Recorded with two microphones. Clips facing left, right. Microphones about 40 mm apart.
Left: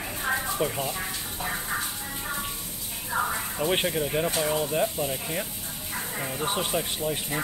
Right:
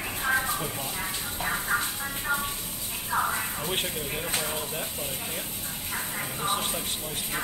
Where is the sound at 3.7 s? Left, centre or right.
Left.